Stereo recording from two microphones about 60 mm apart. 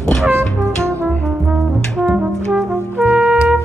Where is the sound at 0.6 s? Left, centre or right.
Right.